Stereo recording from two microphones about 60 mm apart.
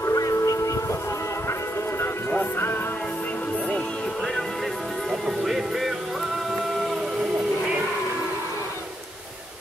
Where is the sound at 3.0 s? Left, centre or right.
Left; by 7.7 s centre.